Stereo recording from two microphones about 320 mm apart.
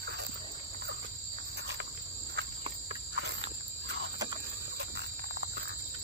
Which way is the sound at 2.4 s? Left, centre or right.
Right.